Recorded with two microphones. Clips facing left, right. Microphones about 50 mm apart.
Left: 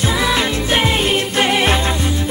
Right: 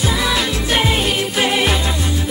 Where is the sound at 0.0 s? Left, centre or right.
Centre.